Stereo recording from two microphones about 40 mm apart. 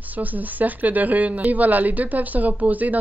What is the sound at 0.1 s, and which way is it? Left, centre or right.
A woman's voice, right.